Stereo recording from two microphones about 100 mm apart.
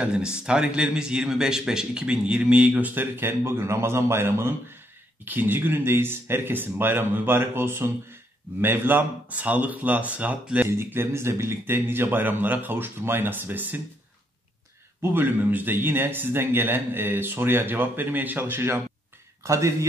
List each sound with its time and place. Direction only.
0.0 s speech: 10° right (ahead or behind)
10.8 s speech: 25° right (ahead or behind)
15.0 s speech: 20° right (ahead or behind)